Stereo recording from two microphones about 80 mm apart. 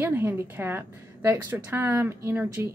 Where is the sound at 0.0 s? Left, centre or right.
Right.